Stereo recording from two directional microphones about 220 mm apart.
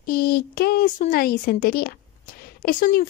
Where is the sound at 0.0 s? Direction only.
45° left (ahead or behind).